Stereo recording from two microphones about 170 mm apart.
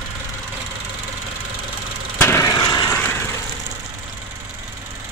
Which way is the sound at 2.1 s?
15° left (ahead or behind).